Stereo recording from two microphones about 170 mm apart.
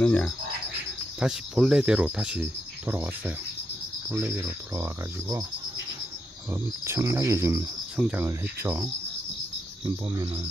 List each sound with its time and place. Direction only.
0.0 s speech: 5° left (ahead or behind); by 4.8 s 15° right (ahead or behind)
6.5 s speech: 15° right (ahead or behind)
9.8 s cricket: 20° right (ahead or behind)